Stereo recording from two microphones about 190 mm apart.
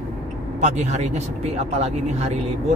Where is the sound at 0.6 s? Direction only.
40° right (ahead or behind).